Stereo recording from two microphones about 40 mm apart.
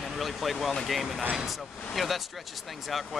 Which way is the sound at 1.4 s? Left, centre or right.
Centre.